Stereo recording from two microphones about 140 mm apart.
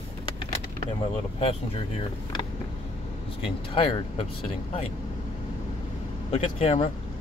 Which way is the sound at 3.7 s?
40° left (ahead or behind).